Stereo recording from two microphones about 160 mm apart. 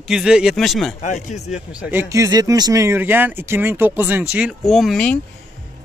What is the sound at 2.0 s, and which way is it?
A man's voice, 20° right (ahead or behind).